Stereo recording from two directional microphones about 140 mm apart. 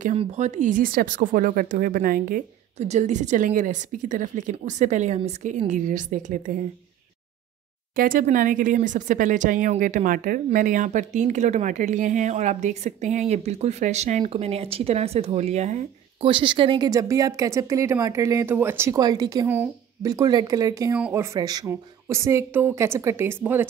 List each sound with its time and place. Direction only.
0.2 s speech: 55° right (ahead or behind); by 2.4 s 90° right
2.8 s speech: 55° right (ahead or behind); by 6.5 s 75° right (ahead or behind)
7.9 s speech: 85° right; by 14.2 s 55° right (ahead or behind)
14.2 s speech: 45° right (ahead or behind)
16.3 s speech: 35° right (ahead or behind); by 18.9 s 15° right (ahead or behind)
18.9 s speech: 30° right (ahead or behind)
19.4 s speech: 15° right (ahead or behind)
20.1 s speech: 25° right (ahead or behind)